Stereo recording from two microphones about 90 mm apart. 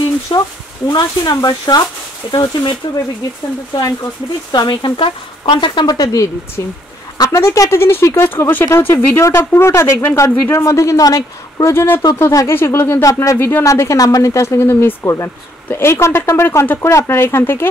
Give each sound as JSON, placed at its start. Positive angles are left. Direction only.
{"t": 0.3, "sound": "speech", "side_deg": 60}
{"t": 0.9, "sound": "speech", "side_deg": 50}
{"t": 2.3, "sound": "speech", "side_deg": 60}
{"t": 3.7, "sound": "speech", "side_deg": 40}
{"t": 4.5, "sound": "speech", "side_deg": 55}
{"t": 5.9, "sound": "speech", "side_deg": 40}
{"t": 11.7, "sound": "speech", "side_deg": 25}
{"t": 13.0, "sound": "speech", "side_deg": 35}
{"t": 13.4, "sound": "speech", "side_deg": 25}
{"t": 13.7, "sound": "speech", "side_deg": 35}